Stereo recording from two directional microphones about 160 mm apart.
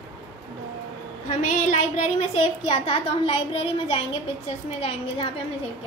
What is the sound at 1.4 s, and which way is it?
A woman's voice, 45° left (ahead or behind).